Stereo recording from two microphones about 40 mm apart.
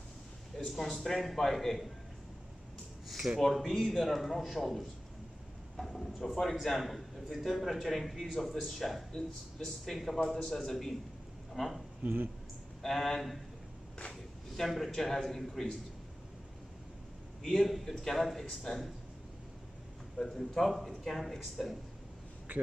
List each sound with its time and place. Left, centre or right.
0.7 s speech: centre
3.3 s a man's voice: centre
5.8 s a man's voice: centre
12.0 s speech: right
12.8 s a man's voice: centre
14.6 s a man's voice: centre
17.4 s a man's voice: centre
20.2 s a man's voice: centre
22.5 s a man's voice: right